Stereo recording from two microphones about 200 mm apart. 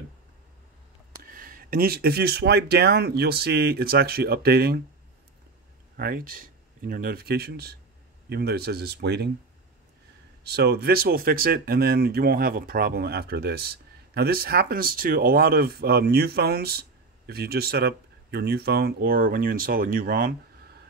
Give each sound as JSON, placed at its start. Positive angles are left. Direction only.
{"t": 1.2, "sound": "speech", "side_deg": -45}
{"t": 5.9, "sound": "speech", "side_deg": -50}
{"t": 10.4, "sound": "speech", "side_deg": -55}